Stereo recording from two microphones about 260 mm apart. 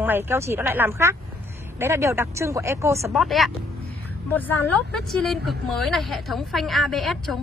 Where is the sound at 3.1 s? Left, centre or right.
Centre.